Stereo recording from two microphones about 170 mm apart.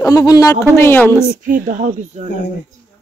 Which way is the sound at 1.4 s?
50° right (ahead or behind).